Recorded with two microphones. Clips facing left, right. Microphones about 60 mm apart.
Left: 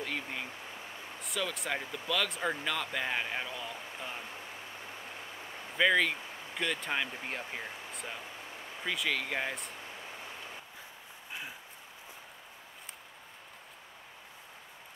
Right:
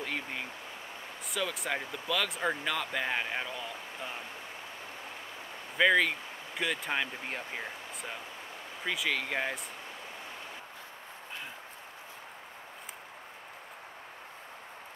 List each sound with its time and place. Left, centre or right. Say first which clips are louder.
0.0 s stream: right 1 dB; centre
1.2 s speech: right 1 dB; centre
5.8 s speech: right 2 dB; centre